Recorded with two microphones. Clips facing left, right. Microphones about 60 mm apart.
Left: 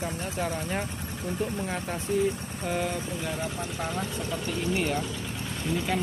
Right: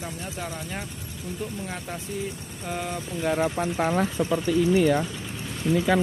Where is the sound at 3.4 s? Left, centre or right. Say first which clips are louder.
Right 8 dB; right.